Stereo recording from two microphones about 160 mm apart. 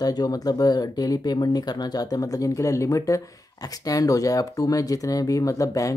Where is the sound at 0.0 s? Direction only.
25° left (ahead or behind).